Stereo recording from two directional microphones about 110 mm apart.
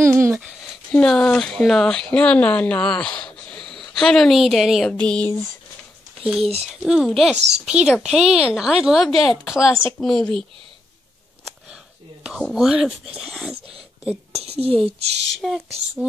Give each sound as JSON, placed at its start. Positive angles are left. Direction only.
{"t": 0.0, "sound": "speech", "side_deg": -25}
{"t": 0.9, "sound": "a woman's voice", "side_deg": 10}
{"t": 4.9, "sound": "speech", "side_deg": 10}
{"t": 6.2, "sound": "speech", "side_deg": -5}
{"t": 12.3, "sound": "speech", "side_deg": 0}
{"t": 14.4, "sound": "speech", "side_deg": -65}
{"t": 15.4, "sound": "speech", "side_deg": 0}